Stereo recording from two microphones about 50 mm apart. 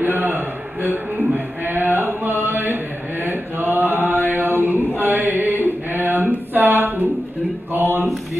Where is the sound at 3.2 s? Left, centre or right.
Right.